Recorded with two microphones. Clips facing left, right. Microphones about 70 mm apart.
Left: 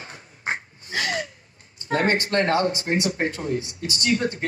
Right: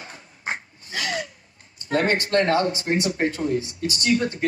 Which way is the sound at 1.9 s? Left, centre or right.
Left.